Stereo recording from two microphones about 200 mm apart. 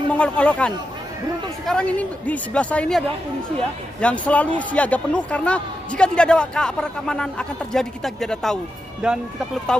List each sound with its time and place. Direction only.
0.1 s a man's voice: 5° left (ahead or behind)
4.0 s a man's voice: 5° left (ahead or behind)